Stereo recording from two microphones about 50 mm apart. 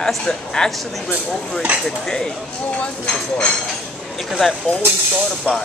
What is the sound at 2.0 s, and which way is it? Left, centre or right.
Speech, centre.